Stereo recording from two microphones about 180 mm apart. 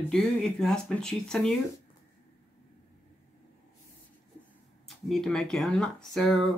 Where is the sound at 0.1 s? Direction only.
5° left (ahead or behind).